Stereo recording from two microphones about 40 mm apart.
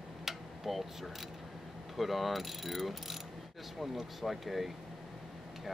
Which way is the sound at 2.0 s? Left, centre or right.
Centre.